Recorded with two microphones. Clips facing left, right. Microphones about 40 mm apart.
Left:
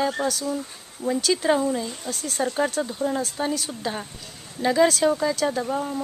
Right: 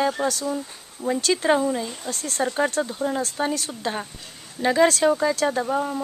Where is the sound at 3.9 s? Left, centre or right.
Centre.